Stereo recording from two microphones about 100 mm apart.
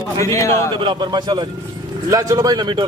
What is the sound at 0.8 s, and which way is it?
A man's voice, 50° right (ahead or behind).